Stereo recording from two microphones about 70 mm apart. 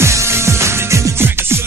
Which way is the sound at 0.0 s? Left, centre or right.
Right.